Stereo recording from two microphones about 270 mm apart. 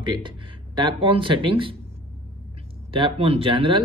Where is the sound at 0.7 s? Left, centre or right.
Centre.